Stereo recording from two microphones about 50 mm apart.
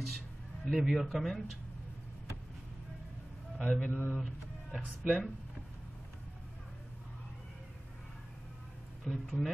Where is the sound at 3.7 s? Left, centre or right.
Left.